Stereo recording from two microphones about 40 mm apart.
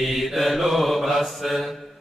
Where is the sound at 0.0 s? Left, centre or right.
Centre.